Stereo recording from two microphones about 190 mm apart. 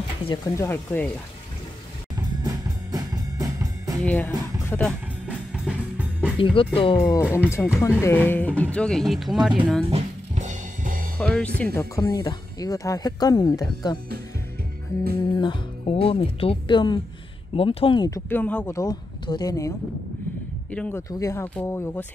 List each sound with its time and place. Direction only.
0.3 s speech: 15° left (ahead or behind)
2.1 s music: 20° right (ahead or behind)
4.0 s speech: 10° left (ahead or behind)
5.5 s music: 5° right (ahead or behind)
6.3 s speech: 25° left (ahead or behind)
7.0 s speech: 15° left (ahead or behind)
9.8 s music: 35° right (ahead or behind)
11.1 s speech: 5° left (ahead or behind)
20.7 s speech: 5° left (ahead or behind)